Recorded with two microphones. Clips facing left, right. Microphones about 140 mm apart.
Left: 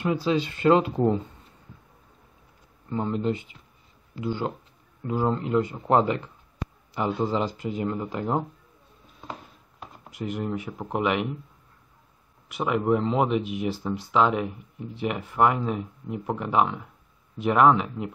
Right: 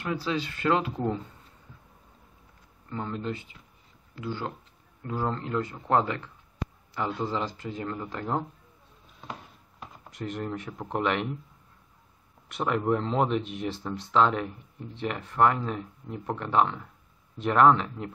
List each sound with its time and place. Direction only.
0.0 s speech: 20° left (ahead or behind)
2.9 s speech: 20° left (ahead or behind)
9.8 s speech: 5° left (ahead or behind)
12.4 s speech: 5° left (ahead or behind)